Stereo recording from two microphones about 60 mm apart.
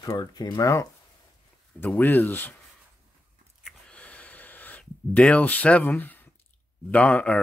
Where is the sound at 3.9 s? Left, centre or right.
Left.